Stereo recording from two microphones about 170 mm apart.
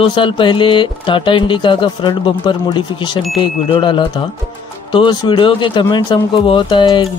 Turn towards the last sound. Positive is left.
turn(degrees=30)  # may be behind; listen again after turning